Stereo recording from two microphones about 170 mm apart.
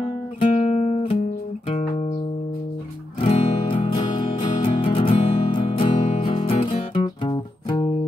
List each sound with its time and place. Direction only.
0.4 s guitar: 40° left (ahead or behind)
3.2 s music: 35° left (ahead or behind)